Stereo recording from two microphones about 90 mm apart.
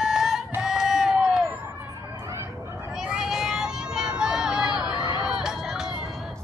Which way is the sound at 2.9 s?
5° right (ahead or behind).